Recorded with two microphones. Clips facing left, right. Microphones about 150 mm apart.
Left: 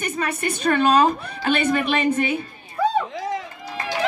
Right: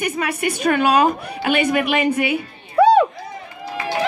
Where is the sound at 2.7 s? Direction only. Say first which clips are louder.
Right 9 dB; 75° right (ahead or behind).